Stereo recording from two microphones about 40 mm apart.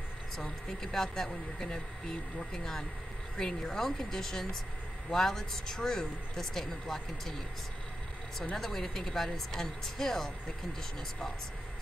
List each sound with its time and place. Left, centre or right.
0.7 s a man's voice: centre
8.5 s a man's voice: centre